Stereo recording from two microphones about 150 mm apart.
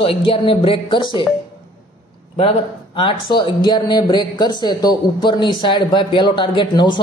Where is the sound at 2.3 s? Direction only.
35° left (ahead or behind).